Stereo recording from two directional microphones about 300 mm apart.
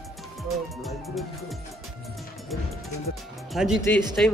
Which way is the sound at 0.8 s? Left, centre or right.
Centre.